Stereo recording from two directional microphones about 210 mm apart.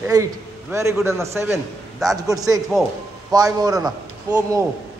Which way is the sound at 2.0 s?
Centre (ahead or behind).